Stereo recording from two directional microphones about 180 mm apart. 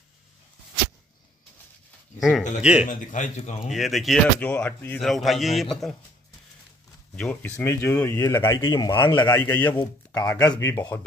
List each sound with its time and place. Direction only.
2.1 s speech: centre (ahead or behind)
2.9 s speech: 45° left (ahead or behind)
3.7 s speech: centre (ahead or behind)
7.2 s speech: 10° left (ahead or behind)
8.4 s speech: 25° left (ahead or behind)
9.3 s speech: 10° left (ahead or behind)